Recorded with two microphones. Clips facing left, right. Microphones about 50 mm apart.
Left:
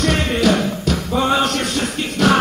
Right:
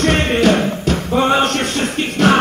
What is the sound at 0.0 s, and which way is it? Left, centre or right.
Music, right.